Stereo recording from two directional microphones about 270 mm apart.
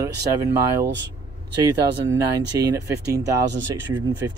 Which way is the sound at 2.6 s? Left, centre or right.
Centre.